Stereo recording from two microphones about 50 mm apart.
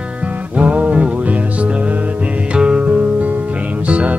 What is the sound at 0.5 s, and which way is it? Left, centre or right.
Music, right.